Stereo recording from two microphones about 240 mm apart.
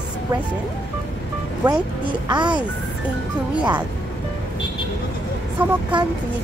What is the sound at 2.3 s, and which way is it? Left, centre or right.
Speech, centre.